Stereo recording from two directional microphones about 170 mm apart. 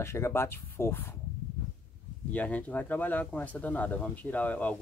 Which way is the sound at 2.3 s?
10° left (ahead or behind).